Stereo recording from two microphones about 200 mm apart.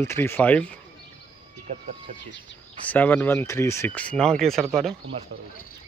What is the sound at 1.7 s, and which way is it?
Speech, 40° right (ahead or behind).